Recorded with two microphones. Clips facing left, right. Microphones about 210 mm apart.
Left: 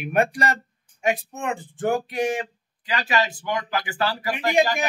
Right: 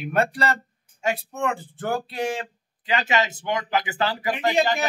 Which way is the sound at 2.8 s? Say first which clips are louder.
Right 1 dB; 25° right (ahead or behind).